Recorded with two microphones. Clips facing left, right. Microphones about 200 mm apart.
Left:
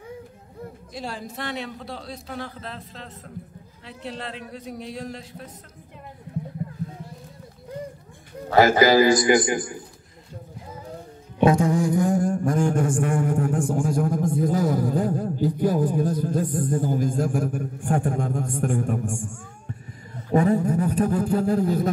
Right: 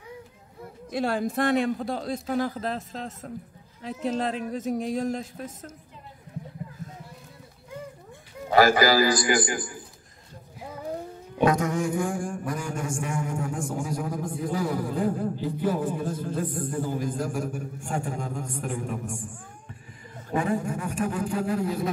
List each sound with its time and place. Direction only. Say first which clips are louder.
0.9 s a man's voice: right 9 dB; 55° right (ahead or behind)
8.5 s a man's voice: left 3 dB; 20° left (ahead or behind)
11.4 s a sound: left 4 dB; 30° left (ahead or behind); by 19.1 s 50° left (ahead or behind)
20.2 s speech: left 7 dB; 40° left (ahead or behind)